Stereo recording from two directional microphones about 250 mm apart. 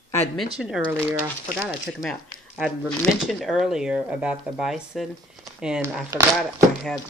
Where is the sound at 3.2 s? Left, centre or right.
Centre.